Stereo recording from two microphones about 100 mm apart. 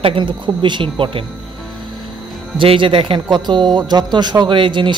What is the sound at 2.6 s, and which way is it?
Speech, 65° right (ahead or behind).